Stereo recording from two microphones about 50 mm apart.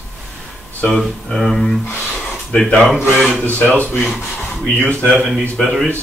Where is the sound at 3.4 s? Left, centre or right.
Left.